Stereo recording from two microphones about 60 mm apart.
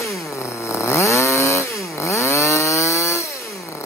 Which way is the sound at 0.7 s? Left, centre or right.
Left.